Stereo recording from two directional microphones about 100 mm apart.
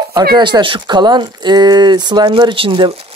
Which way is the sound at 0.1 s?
50° right (ahead or behind).